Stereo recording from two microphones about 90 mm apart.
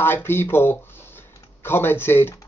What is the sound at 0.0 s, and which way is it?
Speech, 25° left (ahead or behind).